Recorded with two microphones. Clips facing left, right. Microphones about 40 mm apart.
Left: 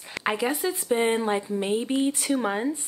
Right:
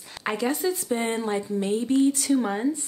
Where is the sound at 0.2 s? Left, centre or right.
Centre.